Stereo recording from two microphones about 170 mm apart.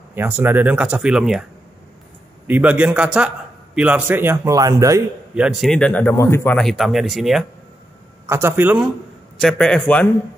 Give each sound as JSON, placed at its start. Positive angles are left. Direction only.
{"t": 0.1, "sound": "speech", "side_deg": -10}
{"t": 2.4, "sound": "speech", "side_deg": -10}
{"t": 5.3, "sound": "speech", "side_deg": -5}
{"t": 8.3, "sound": "speech", "side_deg": -15}
{"t": 9.4, "sound": "speech", "side_deg": 5}